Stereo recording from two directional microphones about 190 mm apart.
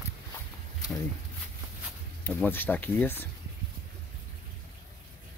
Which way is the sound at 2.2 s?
10° left (ahead or behind).